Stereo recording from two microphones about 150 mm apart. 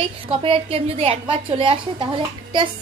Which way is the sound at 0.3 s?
35° right (ahead or behind).